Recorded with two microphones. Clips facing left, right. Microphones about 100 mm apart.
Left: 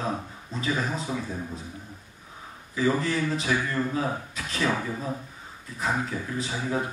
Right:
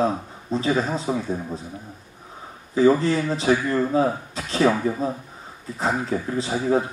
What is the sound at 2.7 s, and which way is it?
Speech, 30° right (ahead or behind).